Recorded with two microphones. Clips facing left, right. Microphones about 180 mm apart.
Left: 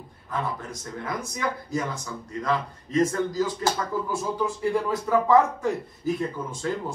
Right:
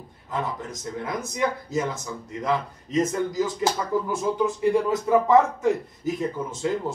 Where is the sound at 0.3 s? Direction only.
20° right (ahead or behind).